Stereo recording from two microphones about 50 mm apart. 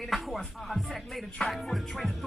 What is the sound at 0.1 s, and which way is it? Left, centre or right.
Music, centre.